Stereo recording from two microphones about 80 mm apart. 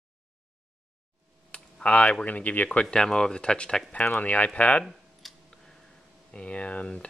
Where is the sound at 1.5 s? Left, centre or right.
Centre.